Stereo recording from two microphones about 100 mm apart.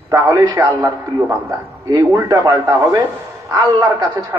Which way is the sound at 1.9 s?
40° right (ahead or behind).